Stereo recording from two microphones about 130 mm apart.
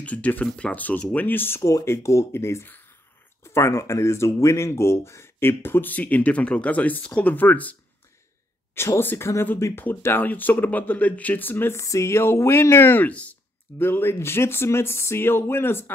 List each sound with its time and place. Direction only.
0.0 s speech: 10° left (ahead or behind)
8.7 s speech: 20° left (ahead or behind)